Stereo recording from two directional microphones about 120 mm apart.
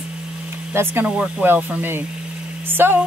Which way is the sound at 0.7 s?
15° right (ahead or behind).